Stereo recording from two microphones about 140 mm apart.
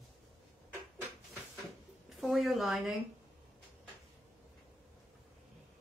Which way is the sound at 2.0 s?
Centre (ahead or behind).